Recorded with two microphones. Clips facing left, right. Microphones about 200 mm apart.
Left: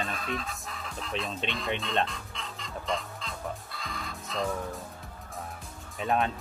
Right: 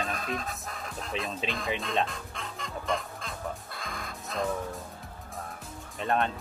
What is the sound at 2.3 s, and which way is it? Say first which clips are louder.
Music: right 2 dB; 50° right (ahead or behind).